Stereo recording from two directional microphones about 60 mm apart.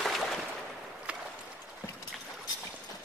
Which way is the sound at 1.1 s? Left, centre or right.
Right.